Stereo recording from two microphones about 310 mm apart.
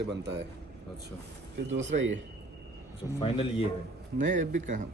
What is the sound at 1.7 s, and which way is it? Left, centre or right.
Speech, right.